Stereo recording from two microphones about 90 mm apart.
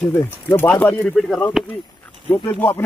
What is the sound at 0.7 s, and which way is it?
Speech, 15° left (ahead or behind).